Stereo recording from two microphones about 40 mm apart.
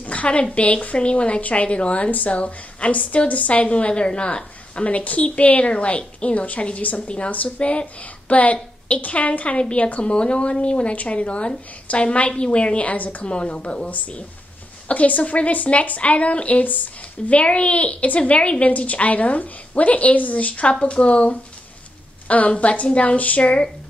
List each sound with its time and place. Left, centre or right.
0.0 s a woman's voice: left
13.2 s speech: left
13.8 s a woman's voice: left
22.5 s a woman's voice: left